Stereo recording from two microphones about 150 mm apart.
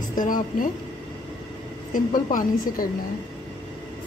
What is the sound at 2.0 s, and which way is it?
Speech, 65° left (ahead or behind).